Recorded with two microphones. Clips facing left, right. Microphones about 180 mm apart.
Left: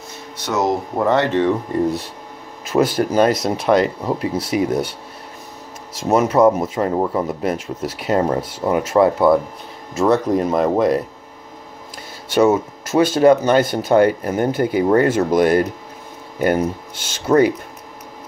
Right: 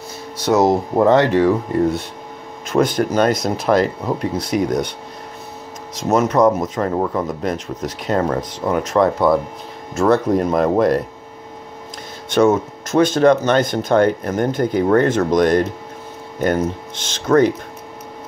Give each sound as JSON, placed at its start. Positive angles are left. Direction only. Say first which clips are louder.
{"t": 0.5, "sound": "speech", "louder": "right 6 dB", "side_deg": -30}
{"t": 0.9, "sound": "speech", "louder": "right 3 dB", "side_deg": -15}
{"t": 5.9, "sound": "speech", "louder": "left 1 dB", "side_deg": 10}
{"t": 12.3, "sound": "speech", "louder": "even", "side_deg": 5}